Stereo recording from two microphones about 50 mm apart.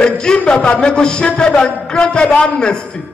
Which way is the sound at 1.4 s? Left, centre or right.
Left.